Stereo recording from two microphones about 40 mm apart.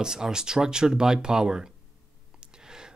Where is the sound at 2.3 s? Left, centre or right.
Centre.